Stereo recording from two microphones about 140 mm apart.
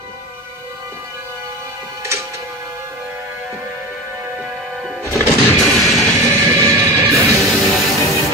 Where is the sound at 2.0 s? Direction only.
20° right (ahead or behind).